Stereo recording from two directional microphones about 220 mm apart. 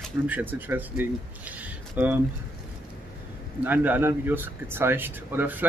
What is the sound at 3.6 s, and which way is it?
Speech, 10° right (ahead or behind).